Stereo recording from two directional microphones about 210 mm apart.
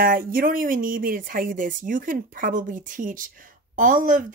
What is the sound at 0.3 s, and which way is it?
A woman's voice, 45° right (ahead or behind).